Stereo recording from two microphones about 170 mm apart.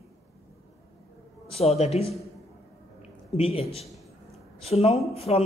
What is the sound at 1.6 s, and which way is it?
Speech, 40° left (ahead or behind).